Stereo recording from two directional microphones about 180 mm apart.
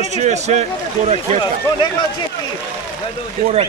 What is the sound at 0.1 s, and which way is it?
Speech, 40° right (ahead or behind).